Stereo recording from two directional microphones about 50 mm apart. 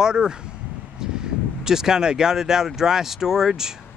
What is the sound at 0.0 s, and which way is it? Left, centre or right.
Speech, centre.